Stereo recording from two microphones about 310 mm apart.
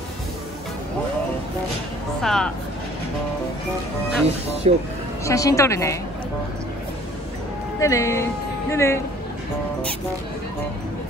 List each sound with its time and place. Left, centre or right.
2.2 s speech: centre
4.7 s speech: right
5.2 s a woman's voice: centre
7.8 s speech: centre